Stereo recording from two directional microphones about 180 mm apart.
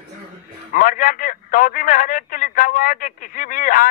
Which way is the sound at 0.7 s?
50° left (ahead or behind).